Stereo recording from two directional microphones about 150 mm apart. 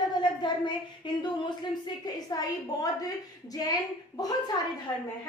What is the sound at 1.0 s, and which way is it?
Speech, 30° left (ahead or behind).